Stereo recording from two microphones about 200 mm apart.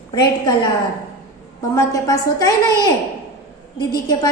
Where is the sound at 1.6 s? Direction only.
15° left (ahead or behind).